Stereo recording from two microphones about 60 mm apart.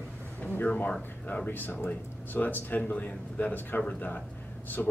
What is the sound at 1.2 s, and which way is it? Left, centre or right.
Speech, left.